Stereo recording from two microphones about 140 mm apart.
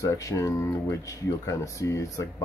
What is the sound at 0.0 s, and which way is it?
Speech, 25° left (ahead or behind).